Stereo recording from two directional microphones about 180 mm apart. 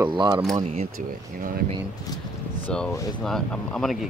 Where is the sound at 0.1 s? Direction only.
25° right (ahead or behind).